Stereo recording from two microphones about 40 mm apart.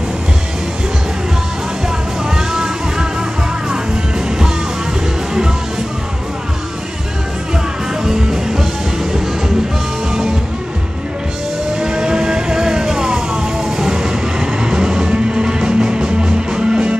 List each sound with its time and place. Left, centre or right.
2.3 s music: centre
8.0 s music: centre
11.8 s music: centre